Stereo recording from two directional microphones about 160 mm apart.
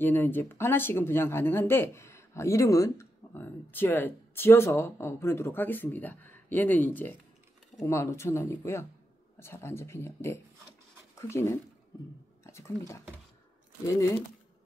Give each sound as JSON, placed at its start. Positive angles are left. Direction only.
{"t": 0.0, "sound": "speech", "side_deg": 15}